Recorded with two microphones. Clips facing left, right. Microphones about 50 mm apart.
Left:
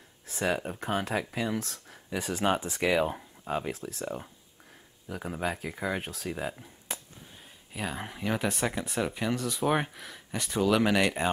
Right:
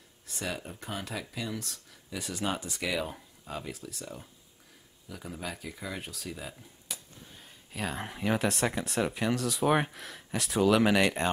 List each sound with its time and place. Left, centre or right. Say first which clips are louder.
0.4 s speech: left 7 dB; left
7.7 s speech: even; centre